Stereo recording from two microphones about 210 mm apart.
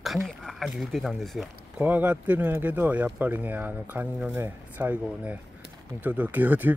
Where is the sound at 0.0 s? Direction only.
Centre (ahead or behind).